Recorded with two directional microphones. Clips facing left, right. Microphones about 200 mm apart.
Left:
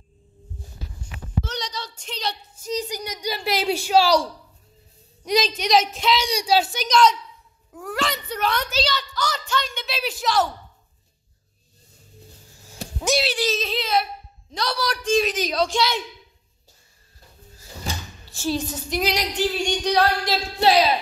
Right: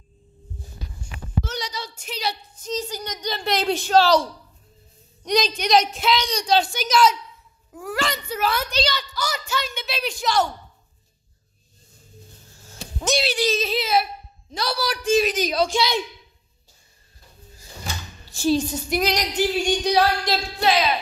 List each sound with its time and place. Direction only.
1.4 s a sound: 5° right (ahead or behind)
2.6 s a woman's voice: 15° left (ahead or behind)
12.6 s a sound: 10° left (ahead or behind)
13.2 s a woman's voice: centre (ahead or behind)
18.3 s speech: 15° right (ahead or behind)
18.9 s a woman's voice: 5° left (ahead or behind)
19.3 s speech: 5° right (ahead or behind)
20.3 s a woman's voice: 5° left (ahead or behind)
20.6 s speech: 35° left (ahead or behind)